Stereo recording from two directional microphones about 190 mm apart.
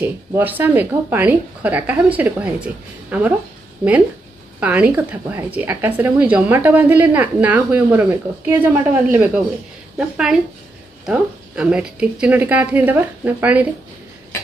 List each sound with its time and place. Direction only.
0.0 s a woman's voice: 10° right (ahead or behind)
4.6 s a woman's voice: 5° right (ahead or behind)